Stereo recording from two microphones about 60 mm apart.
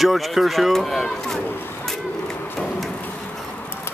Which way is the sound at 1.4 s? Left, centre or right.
Left.